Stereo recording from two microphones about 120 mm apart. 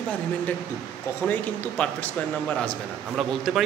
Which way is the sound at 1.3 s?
10° left (ahead or behind).